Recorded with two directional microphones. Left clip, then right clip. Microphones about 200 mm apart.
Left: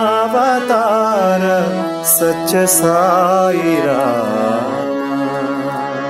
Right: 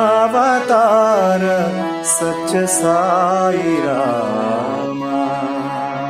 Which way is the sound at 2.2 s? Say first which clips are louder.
Left 5 dB; 15° left (ahead or behind).